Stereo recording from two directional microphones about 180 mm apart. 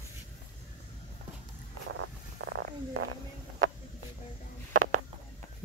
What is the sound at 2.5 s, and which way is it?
Stomach rumble, 75° right (ahead or behind).